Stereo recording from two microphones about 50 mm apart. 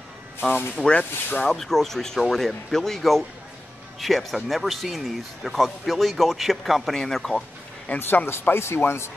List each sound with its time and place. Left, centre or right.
0.4 s speech: left
0.8 s speech: left
1.4 s speech: centre
7.9 s speech: left
8.3 s speech: left